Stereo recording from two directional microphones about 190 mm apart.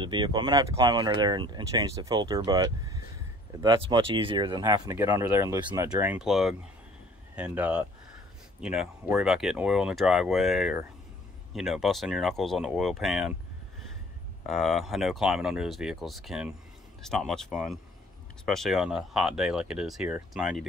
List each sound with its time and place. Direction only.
0.0 s speech: 25° right (ahead or behind); by 13.3 s centre (ahead or behind)
14.5 s speech: centre (ahead or behind)